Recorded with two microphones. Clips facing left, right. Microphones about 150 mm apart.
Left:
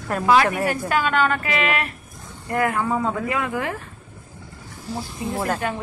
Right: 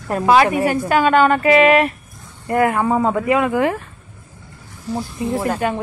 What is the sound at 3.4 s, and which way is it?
Speech, 90° right.